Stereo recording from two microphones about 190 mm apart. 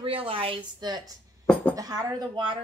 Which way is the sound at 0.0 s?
30° right (ahead or behind).